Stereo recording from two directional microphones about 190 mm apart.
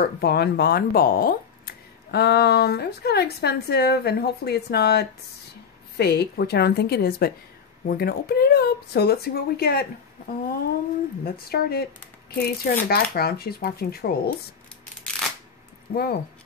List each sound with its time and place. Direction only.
0.0 s speech: 55° left (ahead or behind)
11.2 s speech: 55° left (ahead or behind)
15.9 s speech: 55° left (ahead or behind)